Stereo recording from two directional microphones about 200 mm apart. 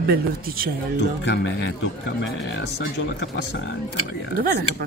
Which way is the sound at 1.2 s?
60° left (ahead or behind).